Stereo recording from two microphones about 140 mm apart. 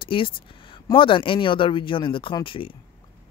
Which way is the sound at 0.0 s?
40° left (ahead or behind).